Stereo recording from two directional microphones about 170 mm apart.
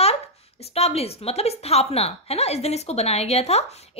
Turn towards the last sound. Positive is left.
turn(degrees=40)  # may be behind; listen again after turning